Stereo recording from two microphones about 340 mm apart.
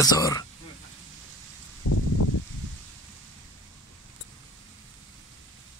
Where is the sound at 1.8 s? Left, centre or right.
Left.